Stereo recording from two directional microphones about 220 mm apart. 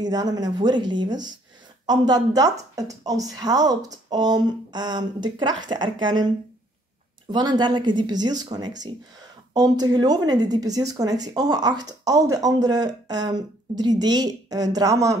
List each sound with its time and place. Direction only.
0.0 s speech: 20° right (ahead or behind)